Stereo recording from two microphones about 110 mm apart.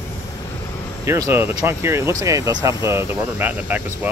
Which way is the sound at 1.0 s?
25° right (ahead or behind).